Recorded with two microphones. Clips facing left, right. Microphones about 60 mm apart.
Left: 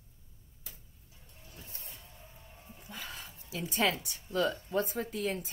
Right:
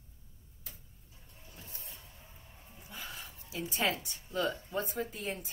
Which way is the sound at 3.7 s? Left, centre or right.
Left.